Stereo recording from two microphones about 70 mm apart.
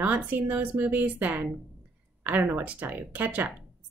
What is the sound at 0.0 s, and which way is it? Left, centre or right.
A woman's voice, right.